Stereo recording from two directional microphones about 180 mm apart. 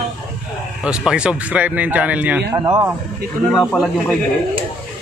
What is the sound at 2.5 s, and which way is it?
Speech, 20° right (ahead or behind).